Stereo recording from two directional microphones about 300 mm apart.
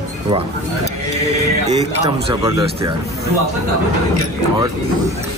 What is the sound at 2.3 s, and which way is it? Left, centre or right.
Speech, centre.